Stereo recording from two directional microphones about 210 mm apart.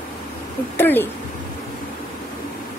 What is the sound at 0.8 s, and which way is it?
Speech, 10° left (ahead or behind).